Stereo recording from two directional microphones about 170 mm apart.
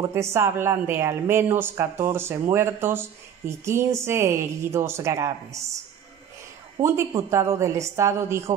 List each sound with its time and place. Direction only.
0.0 s speech: 15° right (ahead or behind)
7.1 s speech: 20° right (ahead or behind)